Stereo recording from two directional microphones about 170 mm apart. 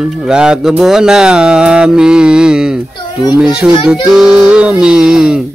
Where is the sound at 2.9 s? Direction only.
25° left (ahead or behind).